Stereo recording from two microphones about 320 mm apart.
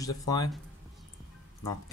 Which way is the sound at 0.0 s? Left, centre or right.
Centre.